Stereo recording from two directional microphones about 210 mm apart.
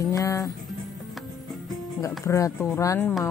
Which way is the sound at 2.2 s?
15° left (ahead or behind).